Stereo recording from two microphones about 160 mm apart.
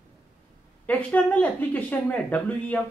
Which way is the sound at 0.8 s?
10° left (ahead or behind).